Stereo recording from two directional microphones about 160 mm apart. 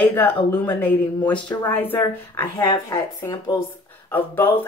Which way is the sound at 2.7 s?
25° left (ahead or behind).